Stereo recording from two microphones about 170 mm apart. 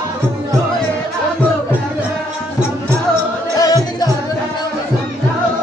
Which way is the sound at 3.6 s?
20° left (ahead or behind).